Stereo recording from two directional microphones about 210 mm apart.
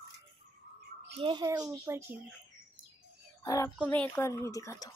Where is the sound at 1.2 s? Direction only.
20° right (ahead or behind).